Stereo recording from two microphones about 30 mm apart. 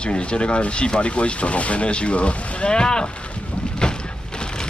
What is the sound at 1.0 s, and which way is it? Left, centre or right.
Speech, left.